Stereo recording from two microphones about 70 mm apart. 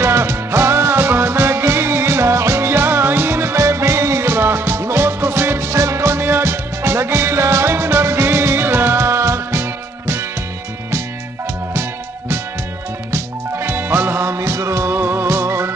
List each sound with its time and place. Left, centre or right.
0.0 s music: right
13.1 s music: right